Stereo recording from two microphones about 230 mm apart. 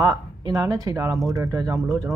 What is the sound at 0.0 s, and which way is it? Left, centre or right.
Speech, centre.